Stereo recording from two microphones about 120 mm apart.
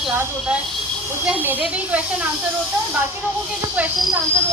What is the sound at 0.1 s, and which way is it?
Speech, 20° right (ahead or behind).